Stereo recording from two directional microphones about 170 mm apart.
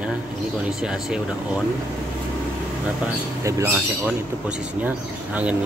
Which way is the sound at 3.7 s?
5° right (ahead or behind).